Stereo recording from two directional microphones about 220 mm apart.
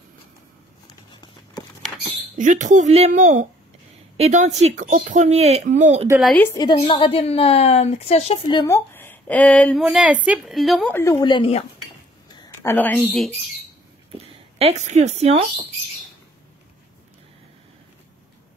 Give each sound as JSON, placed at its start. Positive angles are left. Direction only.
{"t": 2.3, "sound": "speech", "side_deg": -35}
{"t": 6.0, "sound": "a woman's voice", "side_deg": -5}
{"t": 6.3, "sound": "a woman's voice", "side_deg": 10}
{"t": 6.6, "sound": "a woman's voice", "side_deg": 25}
{"t": 9.8, "sound": "a woman's voice", "side_deg": -5}
{"t": 12.4, "sound": "speech", "side_deg": 10}
{"t": 14.6, "sound": "a woman's voice", "side_deg": -30}